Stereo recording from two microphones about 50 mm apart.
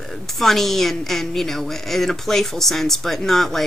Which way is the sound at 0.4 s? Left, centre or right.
Centre.